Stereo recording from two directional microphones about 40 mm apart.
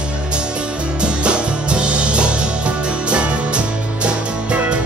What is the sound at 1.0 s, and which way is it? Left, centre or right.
Music, right.